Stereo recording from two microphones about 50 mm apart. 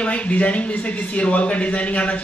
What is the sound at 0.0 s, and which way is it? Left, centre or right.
A woman's voice, left.